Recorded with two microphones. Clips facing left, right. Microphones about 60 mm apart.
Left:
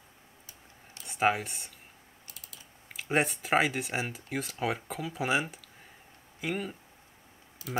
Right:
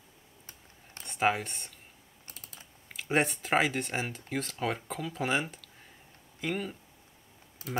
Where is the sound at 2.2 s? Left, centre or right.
Right.